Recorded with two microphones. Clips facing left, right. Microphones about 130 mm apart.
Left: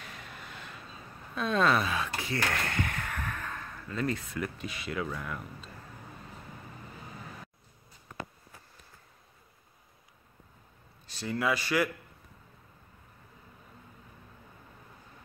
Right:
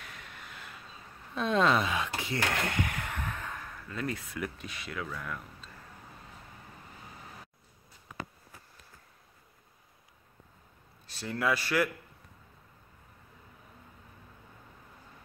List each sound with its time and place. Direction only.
1.3 s speech: 20° right (ahead or behind); by 5.0 s centre (ahead or behind)
5.0 s speech: 15° left (ahead or behind)
11.1 s speech: centre (ahead or behind)